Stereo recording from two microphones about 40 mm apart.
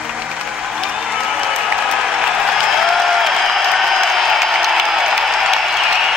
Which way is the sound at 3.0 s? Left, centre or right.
Centre.